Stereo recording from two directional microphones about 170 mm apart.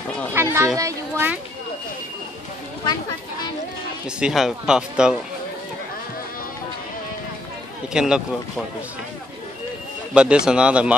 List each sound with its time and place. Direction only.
0.3 s children playing: 15° right (ahead or behind)
0.7 s a child's voice: 15° right (ahead or behind)
2.8 s a sound: 25° left (ahead or behind)
4.2 s speech: centre (ahead or behind)
7.9 s speech: 5° right (ahead or behind)
10.1 s speech: 5° right (ahead or behind)